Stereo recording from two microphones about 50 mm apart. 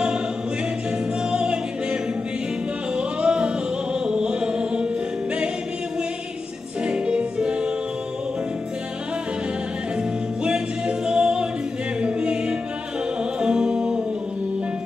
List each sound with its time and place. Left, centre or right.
1.3 s music: centre
3.0 s music: centre
6.9 s music: centre
9.9 s music: centre